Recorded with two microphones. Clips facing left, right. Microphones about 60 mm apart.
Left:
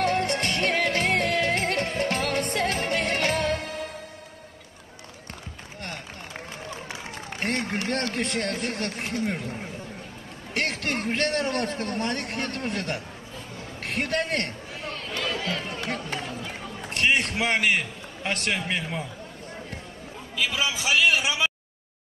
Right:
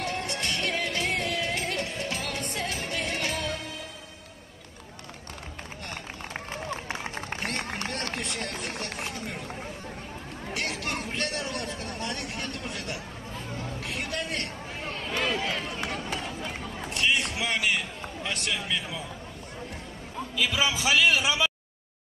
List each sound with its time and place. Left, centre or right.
0.0 s music: left
7.3 s a sound: left
8.2 s a man's voice: left
10.5 s a man's voice: left
15.1 s run: right
16.9 s a man's voice: left
20.7 s a man's voice: centre